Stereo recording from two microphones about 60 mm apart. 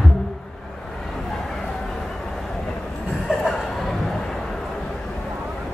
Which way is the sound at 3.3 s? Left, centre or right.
Centre.